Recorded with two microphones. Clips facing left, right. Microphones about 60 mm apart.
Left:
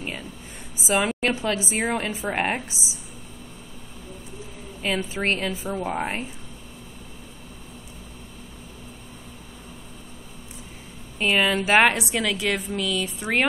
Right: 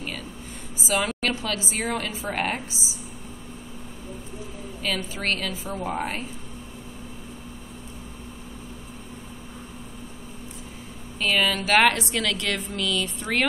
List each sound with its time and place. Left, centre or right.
0.8 s a woman's voice: left
4.8 s a woman's voice: left
5.8 s a woman's voice: centre
11.1 s a woman's voice: left